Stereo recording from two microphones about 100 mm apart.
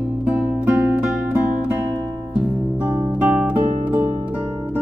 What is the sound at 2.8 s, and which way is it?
Guitar, 20° right (ahead or behind).